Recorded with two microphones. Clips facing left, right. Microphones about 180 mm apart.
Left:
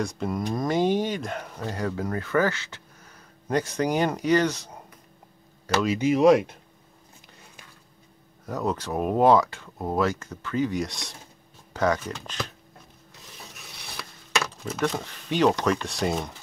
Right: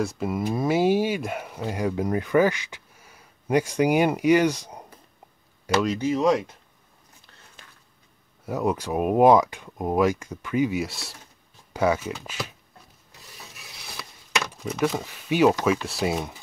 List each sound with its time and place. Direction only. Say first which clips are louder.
0.0 s speech: right 2 dB; 5° right (ahead or behind)
5.9 s speech: left 7 dB; 15° left (ahead or behind)
8.5 s speech: right 3 dB; 10° right (ahead or behind)
13.3 s rub: left 1 dB; centre (ahead or behind)
14.4 s speech: right 4 dB; 5° right (ahead or behind)